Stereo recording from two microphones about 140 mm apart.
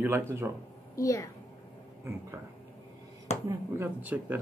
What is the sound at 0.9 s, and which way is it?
Speech, 20° left (ahead or behind).